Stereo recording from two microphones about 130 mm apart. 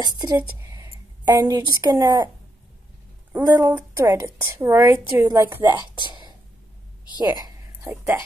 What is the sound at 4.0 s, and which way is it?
A woman's voice, 20° right (ahead or behind).